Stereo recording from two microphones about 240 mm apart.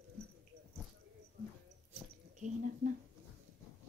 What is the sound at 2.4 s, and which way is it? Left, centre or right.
Speech, right.